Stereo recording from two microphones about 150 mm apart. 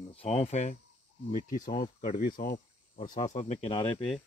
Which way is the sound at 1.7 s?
70° left (ahead or behind).